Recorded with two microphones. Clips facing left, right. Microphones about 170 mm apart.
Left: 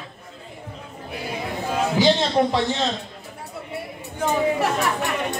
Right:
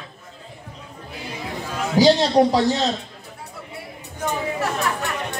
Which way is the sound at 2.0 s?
35° right (ahead or behind).